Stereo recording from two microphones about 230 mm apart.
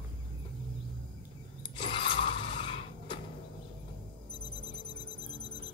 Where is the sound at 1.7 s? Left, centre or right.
Left.